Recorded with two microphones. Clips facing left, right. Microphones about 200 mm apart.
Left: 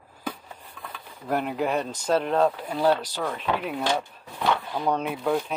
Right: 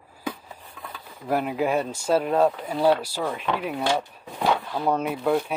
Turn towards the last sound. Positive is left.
turn(degrees=0)  # may be behind; listen again after turning